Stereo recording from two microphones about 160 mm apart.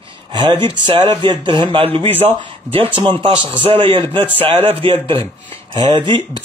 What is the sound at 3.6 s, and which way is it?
Speech, 35° right (ahead or behind).